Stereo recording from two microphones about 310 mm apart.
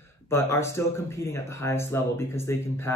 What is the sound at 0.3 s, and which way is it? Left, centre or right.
Speech, centre.